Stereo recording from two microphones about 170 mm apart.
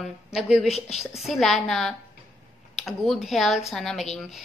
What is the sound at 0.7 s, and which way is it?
Speech, 40° left (ahead or behind).